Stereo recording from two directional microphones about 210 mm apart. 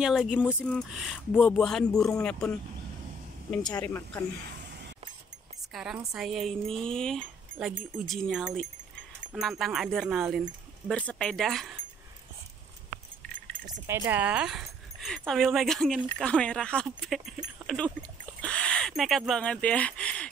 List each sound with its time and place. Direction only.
0.0 s speech: 5° right (ahead or behind)
3.6 s speech: 15° left (ahead or behind)
5.7 s a woman's voice: centre (ahead or behind)
13.8 s speech: 10° right (ahead or behind); by 20.2 s 5° left (ahead or behind)